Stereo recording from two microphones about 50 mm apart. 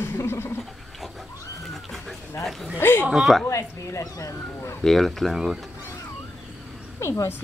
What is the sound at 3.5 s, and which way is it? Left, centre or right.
Speech, left.